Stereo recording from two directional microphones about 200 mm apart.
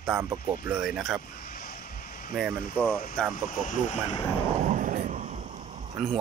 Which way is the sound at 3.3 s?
40° left (ahead or behind).